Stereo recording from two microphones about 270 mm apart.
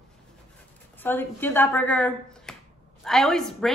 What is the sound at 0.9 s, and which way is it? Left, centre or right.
A woman's voice, centre.